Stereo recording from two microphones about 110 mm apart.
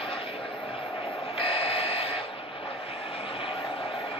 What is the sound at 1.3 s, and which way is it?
Alarm clock, 60° left (ahead or behind).